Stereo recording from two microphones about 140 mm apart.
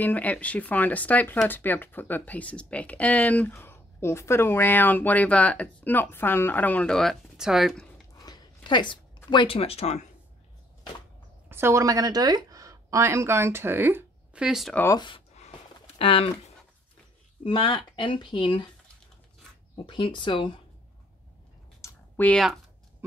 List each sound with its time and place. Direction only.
0.0 s speech: 10° left (ahead or behind)
8.2 s a sound: 30° left (ahead or behind); by 10.0 s 50° left (ahead or behind)
11.4 s a woman's voice: 15° right (ahead or behind)
14.9 s speech: 35° left (ahead or behind)
17.4 s speech: 40° left (ahead or behind)
19.7 s speech: 35° left (ahead or behind)
21.8 s a sound: 15° left (ahead or behind)